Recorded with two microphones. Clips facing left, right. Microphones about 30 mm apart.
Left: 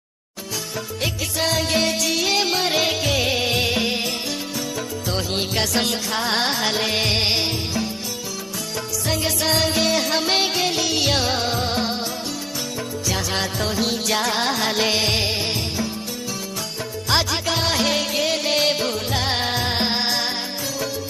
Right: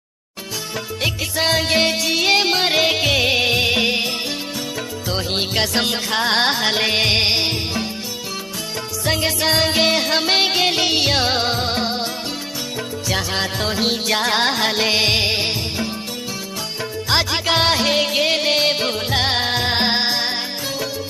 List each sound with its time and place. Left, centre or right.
1.0 s music: right
5.3 s music: right
7.4 s music: right
9.0 s music: right
13.6 s music: right
17.5 s music: right
17.9 s music: right
18.5 s music: centre
18.9 s music: right
19.3 s music: centre